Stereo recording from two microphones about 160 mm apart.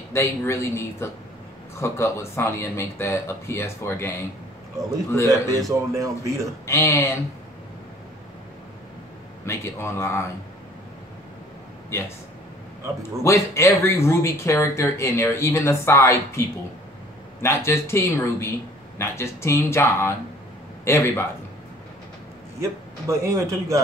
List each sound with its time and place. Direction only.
0.1 s speech: 15° left (ahead or behind)
5.5 s speech: 20° right (ahead or behind)
6.6 s speech: 15° left (ahead or behind)
9.5 s speech: 15° left (ahead or behind)
13.2 s speech: 15° left (ahead or behind)
22.6 s speech: 15° right (ahead or behind)